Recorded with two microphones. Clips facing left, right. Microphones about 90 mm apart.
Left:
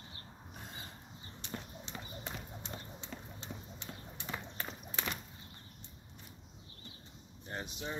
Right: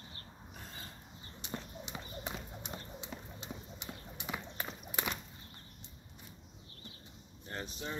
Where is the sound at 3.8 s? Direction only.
10° right (ahead or behind).